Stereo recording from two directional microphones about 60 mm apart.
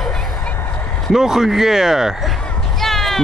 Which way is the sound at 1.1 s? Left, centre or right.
Centre.